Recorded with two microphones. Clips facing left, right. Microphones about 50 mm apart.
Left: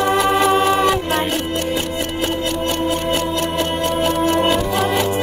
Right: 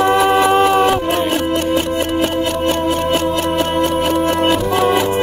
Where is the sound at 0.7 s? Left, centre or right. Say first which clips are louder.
Right 3 dB; right.